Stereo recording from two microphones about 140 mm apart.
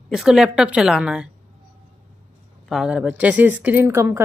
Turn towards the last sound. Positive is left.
turn(degrees=-20)  # may be behind; listen again after turning